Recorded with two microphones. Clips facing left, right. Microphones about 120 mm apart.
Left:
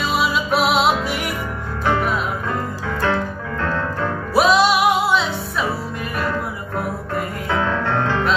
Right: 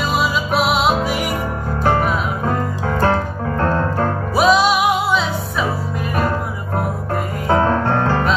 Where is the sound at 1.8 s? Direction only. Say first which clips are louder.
Right 2 dB; 45° right (ahead or behind).